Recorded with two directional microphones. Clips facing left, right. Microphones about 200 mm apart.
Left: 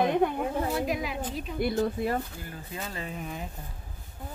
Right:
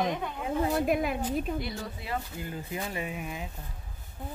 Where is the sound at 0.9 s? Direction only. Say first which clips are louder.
Right 4 dB; 55° right (ahead or behind).